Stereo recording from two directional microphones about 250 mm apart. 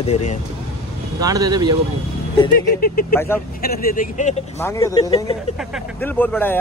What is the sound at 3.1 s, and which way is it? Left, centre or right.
Speech, centre.